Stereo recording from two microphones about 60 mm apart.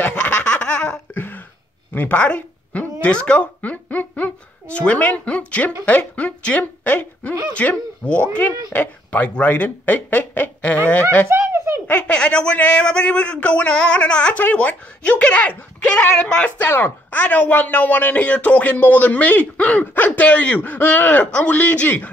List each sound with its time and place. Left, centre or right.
0.1 s laughter: centre
1.1 s a sound: left
2.0 s a man's voice: left
11.2 s a sound: right
11.9 s a man's voice: left
16.5 s a man's voice: left